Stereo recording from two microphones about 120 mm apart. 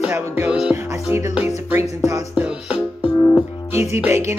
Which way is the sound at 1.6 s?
25° right (ahead or behind).